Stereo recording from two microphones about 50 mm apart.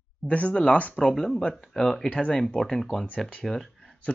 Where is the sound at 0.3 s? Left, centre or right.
Left.